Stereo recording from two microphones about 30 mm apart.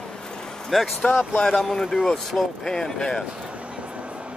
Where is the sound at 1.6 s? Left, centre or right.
Centre.